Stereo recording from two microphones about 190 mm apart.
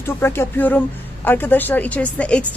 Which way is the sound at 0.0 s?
10° left (ahead or behind).